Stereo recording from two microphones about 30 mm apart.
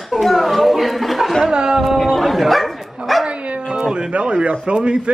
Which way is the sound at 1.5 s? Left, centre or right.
Right.